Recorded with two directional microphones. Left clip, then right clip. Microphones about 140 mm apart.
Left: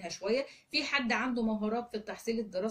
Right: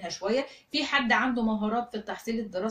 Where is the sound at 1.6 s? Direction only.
40° right (ahead or behind).